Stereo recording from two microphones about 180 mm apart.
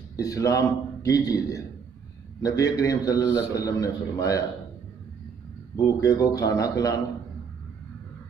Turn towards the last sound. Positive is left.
turn(degrees=20)  # may be behind; listen again after turning